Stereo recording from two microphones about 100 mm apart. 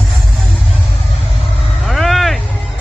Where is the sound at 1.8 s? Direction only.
Centre (ahead or behind).